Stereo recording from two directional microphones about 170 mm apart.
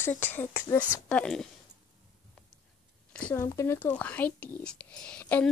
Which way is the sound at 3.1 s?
10° left (ahead or behind).